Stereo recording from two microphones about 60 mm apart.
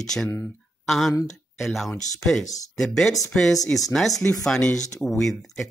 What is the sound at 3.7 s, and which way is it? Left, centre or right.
Speech, left.